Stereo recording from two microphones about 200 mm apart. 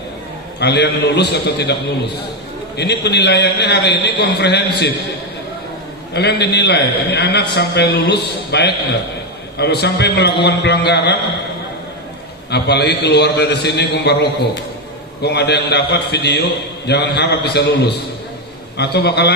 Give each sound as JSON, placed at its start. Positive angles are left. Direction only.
{"t": 0.6, "sound": "a man's voice", "side_deg": 55}
{"t": 2.8, "sound": "a man's voice", "side_deg": 55}
{"t": 6.1, "sound": "a man's voice", "side_deg": 55}
{"t": 12.4, "sound": "a man's voice", "side_deg": 55}